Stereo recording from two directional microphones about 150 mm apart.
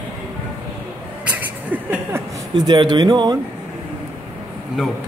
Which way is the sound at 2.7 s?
30° right (ahead or behind).